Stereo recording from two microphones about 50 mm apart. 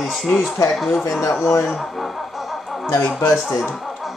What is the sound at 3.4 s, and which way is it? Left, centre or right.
Speech, centre.